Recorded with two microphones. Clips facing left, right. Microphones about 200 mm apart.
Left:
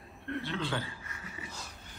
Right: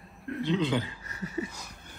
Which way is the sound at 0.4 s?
20° right (ahead or behind).